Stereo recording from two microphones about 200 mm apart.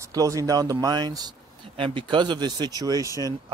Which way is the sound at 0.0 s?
15° right (ahead or behind).